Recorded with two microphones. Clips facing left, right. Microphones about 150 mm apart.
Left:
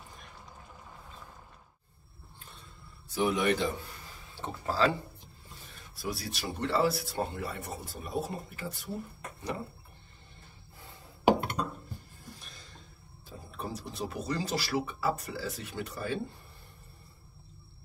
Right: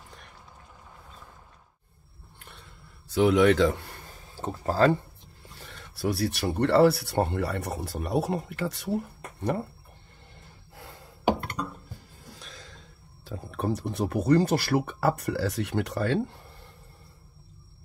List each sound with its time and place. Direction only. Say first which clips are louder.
2.3 s a sound: right 2 dB; 70° right (ahead or behind); by 4.9 s 45° right (ahead or behind)
5.6 s speech: right 11 dB; 75° right (ahead or behind)
12.3 s speech: right 4 dB; 90° right